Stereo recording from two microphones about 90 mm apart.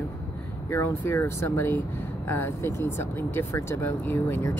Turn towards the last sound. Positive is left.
turn(degrees=25)  # may be behind; listen again after turning